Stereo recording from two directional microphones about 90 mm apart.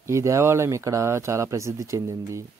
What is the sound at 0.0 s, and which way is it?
Speech, 35° right (ahead or behind).